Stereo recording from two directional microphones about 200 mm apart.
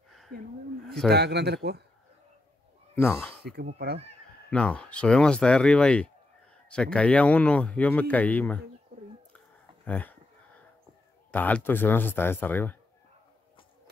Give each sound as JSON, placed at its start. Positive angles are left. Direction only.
{"t": 0.3, "sound": "a woman's voice", "side_deg": -50}
{"t": 3.2, "sound": "speech", "side_deg": 0}
{"t": 9.8, "sound": "speech", "side_deg": 10}
{"t": 11.3, "sound": "speech", "side_deg": 10}